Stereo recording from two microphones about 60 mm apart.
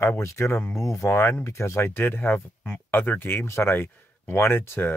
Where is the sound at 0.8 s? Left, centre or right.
Left.